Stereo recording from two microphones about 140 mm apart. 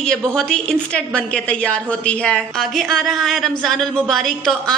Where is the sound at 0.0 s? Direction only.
5° left (ahead or behind).